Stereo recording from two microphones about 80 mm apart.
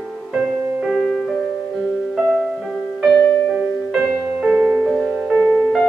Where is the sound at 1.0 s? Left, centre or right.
Centre.